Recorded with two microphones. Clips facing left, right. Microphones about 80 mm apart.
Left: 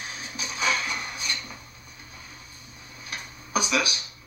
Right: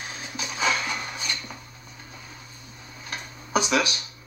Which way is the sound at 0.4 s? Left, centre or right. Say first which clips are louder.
Right 1 dB; centre.